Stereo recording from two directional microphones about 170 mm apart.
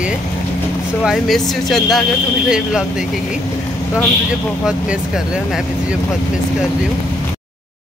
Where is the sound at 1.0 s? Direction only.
Centre (ahead or behind).